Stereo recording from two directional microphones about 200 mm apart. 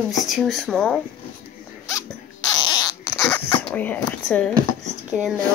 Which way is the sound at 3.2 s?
5° left (ahead or behind).